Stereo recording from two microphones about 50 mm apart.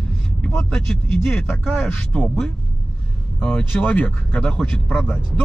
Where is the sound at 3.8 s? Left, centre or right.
Left; by 5.0 s centre.